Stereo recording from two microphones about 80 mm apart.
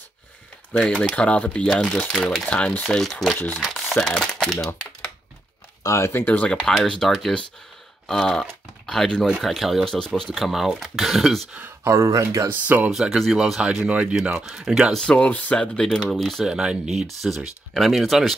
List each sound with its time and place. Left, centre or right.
0.7 s speech: centre
5.9 s speech: left
6.2 s speech: centre
6.7 s speech: centre
10.3 s speech: centre
11.8 s speech: right
12.4 s speech: right
12.9 s speech: centre
15.0 s speech: centre
16.4 s speech: centre